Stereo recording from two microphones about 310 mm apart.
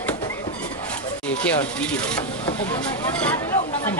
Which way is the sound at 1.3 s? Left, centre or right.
Centre.